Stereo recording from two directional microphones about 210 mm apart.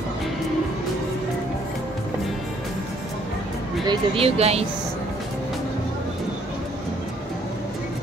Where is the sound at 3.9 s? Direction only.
30° right (ahead or behind).